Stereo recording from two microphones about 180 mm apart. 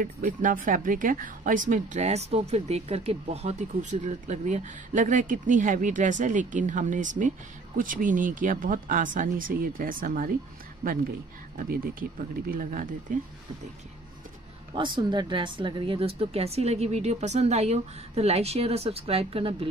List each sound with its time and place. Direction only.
0.0 s a woman's voice: 50° right (ahead or behind)
14.7 s speech: 25° right (ahead or behind)